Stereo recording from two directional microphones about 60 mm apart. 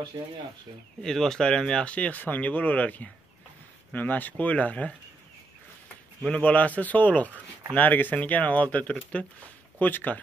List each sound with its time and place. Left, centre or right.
1.0 s speech: centre; by 4.9 s left
6.3 s speech: left